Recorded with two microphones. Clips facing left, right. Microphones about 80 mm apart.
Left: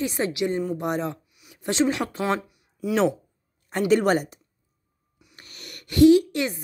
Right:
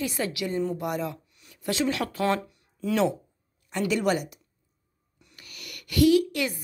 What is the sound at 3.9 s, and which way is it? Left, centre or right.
Speech, left.